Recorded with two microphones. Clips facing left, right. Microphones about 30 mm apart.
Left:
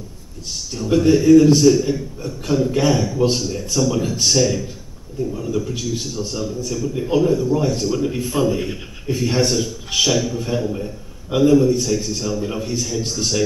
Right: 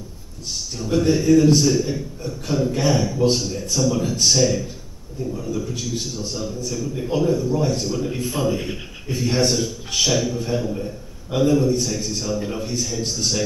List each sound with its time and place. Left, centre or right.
0.9 s a man's voice: centre
5.3 s speech: centre
5.6 s a man's voice: centre
6.9 s speech: centre
7.2 s a man's voice: centre